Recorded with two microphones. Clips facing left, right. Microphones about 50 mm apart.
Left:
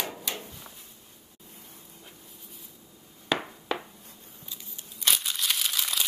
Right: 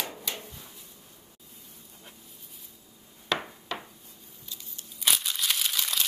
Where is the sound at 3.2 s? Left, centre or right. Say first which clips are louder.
Left 2 dB; centre.